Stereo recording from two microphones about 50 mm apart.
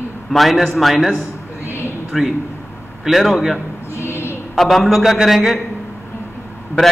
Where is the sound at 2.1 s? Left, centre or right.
Centre.